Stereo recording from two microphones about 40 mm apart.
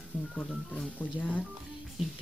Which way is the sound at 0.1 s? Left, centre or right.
Left.